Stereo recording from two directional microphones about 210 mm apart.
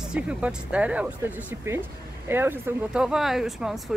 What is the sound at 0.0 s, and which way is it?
Speech, 5° right (ahead or behind).